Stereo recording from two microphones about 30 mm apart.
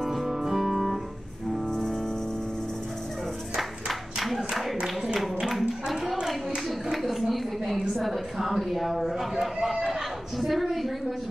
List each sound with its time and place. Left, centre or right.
0.0 s music: centre
4.2 s a sound: centre
6.9 s a sound: centre
7.9 s a woman's voice: centre
9.6 s speech: right
10.4 s a woman's voice: centre